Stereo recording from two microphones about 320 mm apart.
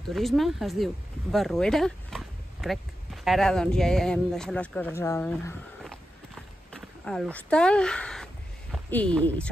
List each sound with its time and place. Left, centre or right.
0.1 s speech: centre
6.7 s speech: centre